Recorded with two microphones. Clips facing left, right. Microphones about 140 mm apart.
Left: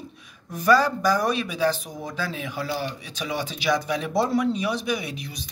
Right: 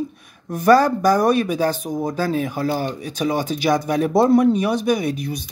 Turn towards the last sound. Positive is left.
turn(degrees=-50)  # may be behind; listen again after turning